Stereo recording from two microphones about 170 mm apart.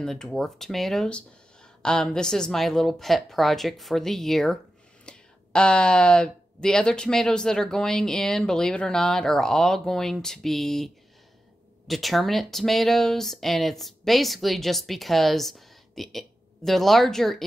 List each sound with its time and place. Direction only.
0.0 s speech: 5° left (ahead or behind)
11.9 s speech: centre (ahead or behind)